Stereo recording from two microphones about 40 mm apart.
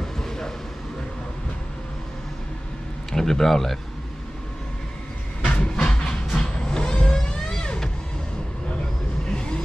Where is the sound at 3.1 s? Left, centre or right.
Centre.